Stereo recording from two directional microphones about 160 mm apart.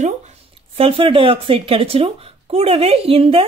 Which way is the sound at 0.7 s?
35° right (ahead or behind).